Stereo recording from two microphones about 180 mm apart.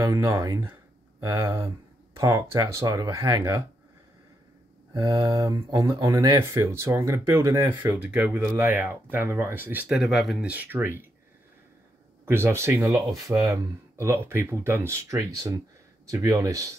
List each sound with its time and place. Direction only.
0.0 s speech: 20° right (ahead or behind)
4.9 s speech: 20° right (ahead or behind)
12.3 s speech: 15° right (ahead or behind)